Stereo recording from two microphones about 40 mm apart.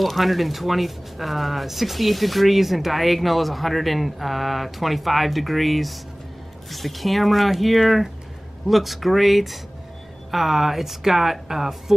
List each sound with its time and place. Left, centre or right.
0.0 s speech: centre